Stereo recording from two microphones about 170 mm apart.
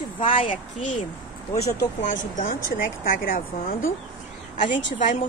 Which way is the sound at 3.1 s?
55° left (ahead or behind).